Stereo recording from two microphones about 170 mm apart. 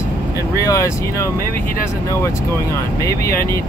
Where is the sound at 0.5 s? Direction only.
15° left (ahead or behind).